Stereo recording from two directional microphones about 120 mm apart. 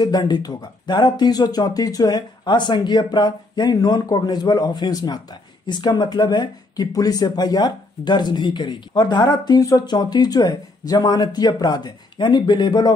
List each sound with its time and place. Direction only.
0.0 s speech: 35° left (ahead or behind)